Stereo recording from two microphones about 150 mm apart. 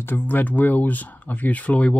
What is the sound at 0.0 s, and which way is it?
Speech, 10° left (ahead or behind).